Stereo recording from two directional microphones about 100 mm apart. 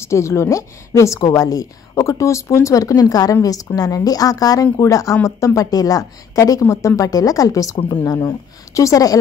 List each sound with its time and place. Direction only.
0.0 s a woman's voice: 30° left (ahead or behind)